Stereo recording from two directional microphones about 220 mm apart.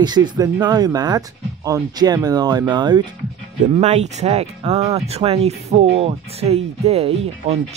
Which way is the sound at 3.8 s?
30° right (ahead or behind).